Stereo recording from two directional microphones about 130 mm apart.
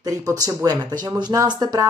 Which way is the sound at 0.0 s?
25° right (ahead or behind).